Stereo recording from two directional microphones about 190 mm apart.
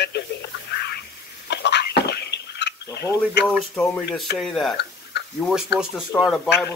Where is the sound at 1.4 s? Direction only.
60° left (ahead or behind).